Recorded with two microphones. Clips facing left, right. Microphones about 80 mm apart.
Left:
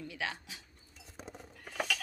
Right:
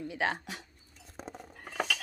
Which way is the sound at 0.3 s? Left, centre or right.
Right.